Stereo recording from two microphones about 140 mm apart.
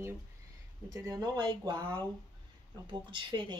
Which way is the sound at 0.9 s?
30° right (ahead or behind).